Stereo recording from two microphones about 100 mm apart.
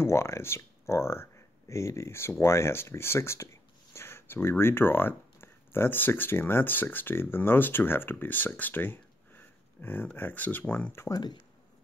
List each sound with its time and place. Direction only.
0.0 s speech: 30° left (ahead or behind)